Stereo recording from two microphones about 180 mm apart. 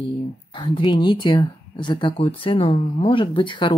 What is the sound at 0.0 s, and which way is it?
Speech, 30° left (ahead or behind).